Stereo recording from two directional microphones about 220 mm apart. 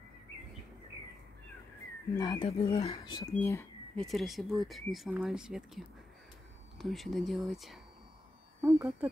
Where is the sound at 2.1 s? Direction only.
20° left (ahead or behind).